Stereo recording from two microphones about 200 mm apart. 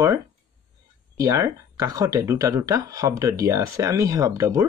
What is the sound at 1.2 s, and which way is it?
Speech, 15° right (ahead or behind).